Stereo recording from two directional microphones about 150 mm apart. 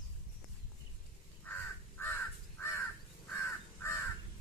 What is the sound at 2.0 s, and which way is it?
Crow, 15° left (ahead or behind).